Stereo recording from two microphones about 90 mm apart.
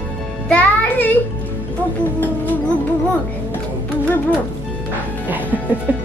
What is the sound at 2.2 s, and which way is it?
Music, 20° left (ahead or behind).